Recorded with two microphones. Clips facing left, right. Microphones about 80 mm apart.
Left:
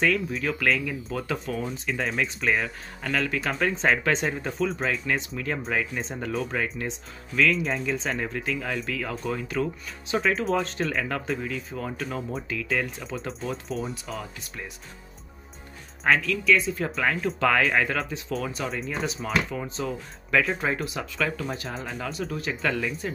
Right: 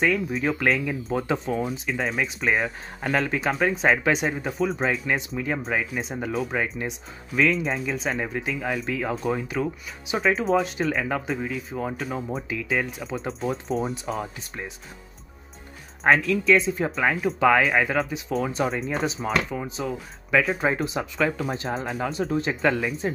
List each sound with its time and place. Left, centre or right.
0.0 s speech: centre
1.6 s speech: centre
8.8 s speech: right; by 13.2 s centre
13.5 s speech: right
14.1 s speech: right
16.0 s speech: right
16.5 s speech: right
18.4 s speech: right
19.2 s speech: centre
20.7 s speech: right
21.6 s speech: right
22.0 s speech: right